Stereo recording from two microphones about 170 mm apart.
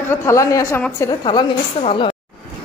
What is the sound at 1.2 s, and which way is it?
Speech, 30° left (ahead or behind).